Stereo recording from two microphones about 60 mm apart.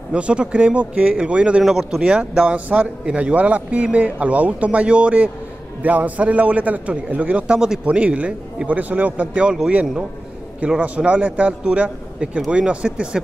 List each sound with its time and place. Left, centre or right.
0.1 s a man's voice: centre
9.5 s speech: centre
10.8 s a man's voice: right